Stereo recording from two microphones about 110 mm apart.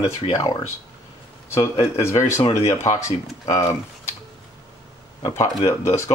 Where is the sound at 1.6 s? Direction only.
60° left (ahead or behind).